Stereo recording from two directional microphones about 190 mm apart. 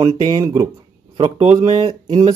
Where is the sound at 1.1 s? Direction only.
35° right (ahead or behind).